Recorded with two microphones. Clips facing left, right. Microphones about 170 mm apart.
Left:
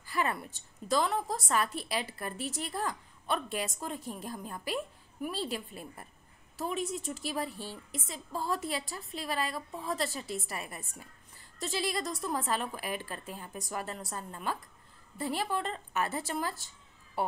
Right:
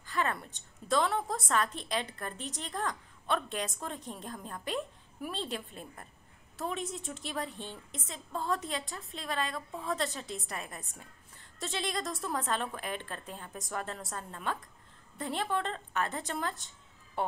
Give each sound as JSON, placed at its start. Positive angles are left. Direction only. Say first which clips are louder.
{"t": 0.0, "sound": "a woman's voice", "louder": "left 1 dB", "side_deg": 10}